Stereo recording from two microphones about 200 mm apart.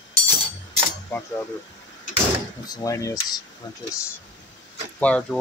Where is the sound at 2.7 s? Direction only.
15° left (ahead or behind).